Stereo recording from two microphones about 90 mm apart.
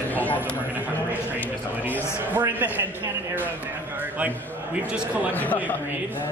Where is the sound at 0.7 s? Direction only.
20° right (ahead or behind).